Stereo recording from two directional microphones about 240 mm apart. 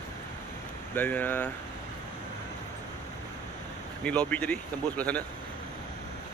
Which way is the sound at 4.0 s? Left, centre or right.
Centre.